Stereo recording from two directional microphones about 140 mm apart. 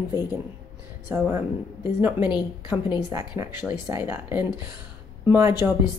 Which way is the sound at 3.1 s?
20° right (ahead or behind).